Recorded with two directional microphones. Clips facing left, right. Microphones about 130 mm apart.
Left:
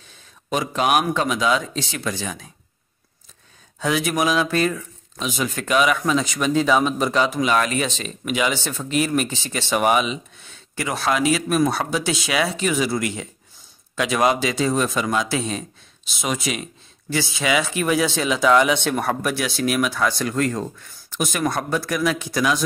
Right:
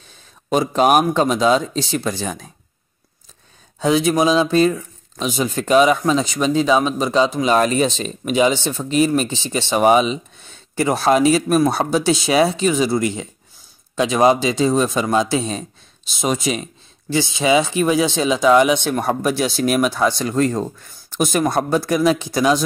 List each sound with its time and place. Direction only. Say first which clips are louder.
0.5 s speech: right 5 dB; 35° right (ahead or behind)
3.8 s speech: right 5 dB; 25° right (ahead or behind)
7.4 s speech: right 5 dB; 35° right (ahead or behind)